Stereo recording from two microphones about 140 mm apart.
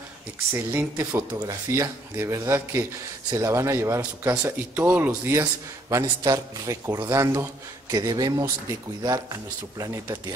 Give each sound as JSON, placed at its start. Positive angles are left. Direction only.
{"t": 0.5, "sound": "speech", "side_deg": -15}